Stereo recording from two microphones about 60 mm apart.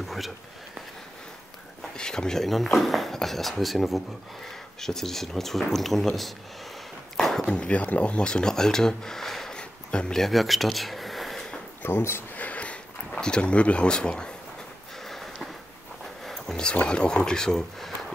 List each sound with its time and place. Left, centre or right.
0.0 s a sound: centre
2.0 s speech: centre
7.2 s a sound: centre
7.4 s speech: centre
9.6 s a sound: centre
10.2 s speech: centre
11.8 s speech: left
12.4 s sniff: left
13.1 s speech: centre
15.0 s sniff: centre
16.3 s a sound: centre
16.7 s speech: centre